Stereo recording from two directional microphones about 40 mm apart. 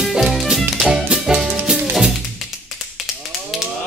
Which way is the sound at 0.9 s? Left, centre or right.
Centre.